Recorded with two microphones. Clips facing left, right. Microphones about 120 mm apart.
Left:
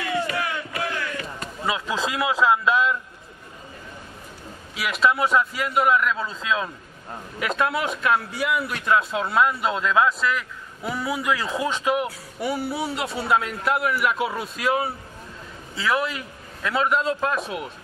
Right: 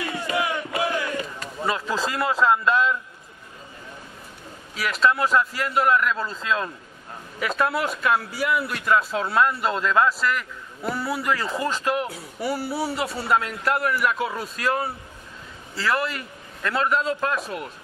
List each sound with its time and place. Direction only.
0.3 s battle cry: 15° right (ahead or behind)
1.6 s a man's voice: centre (ahead or behind)
4.7 s a man's voice: 5° left (ahead or behind)